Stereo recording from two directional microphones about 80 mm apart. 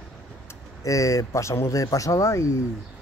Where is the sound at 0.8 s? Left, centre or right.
Left.